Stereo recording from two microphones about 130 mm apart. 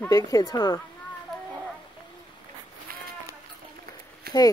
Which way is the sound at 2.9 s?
90° right.